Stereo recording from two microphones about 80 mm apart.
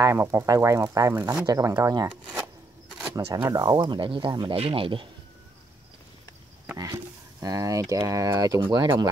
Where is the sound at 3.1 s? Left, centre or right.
Right.